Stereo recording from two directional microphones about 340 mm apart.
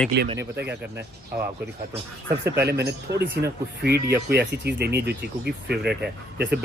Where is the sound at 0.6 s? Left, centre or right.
Right.